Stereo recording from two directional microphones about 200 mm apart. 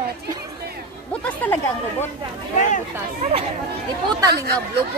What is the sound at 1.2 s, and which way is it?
Speech, 10° left (ahead or behind).